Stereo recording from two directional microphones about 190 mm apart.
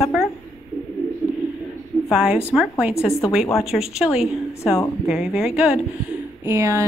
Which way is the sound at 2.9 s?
15° left (ahead or behind).